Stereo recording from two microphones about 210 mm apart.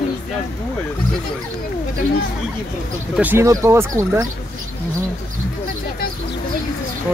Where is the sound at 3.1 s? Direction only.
10° right (ahead or behind).